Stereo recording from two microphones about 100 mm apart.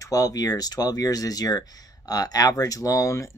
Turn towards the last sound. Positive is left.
turn(degrees=35)  # may be behind; listen again after turning